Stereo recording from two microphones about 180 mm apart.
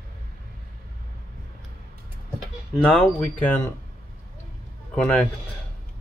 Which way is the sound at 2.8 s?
5° left (ahead or behind).